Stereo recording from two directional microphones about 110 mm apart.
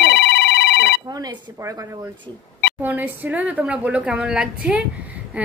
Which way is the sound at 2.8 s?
15° right (ahead or behind).